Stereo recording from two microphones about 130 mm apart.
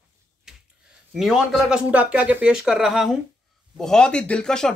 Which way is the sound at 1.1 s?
Centre (ahead or behind).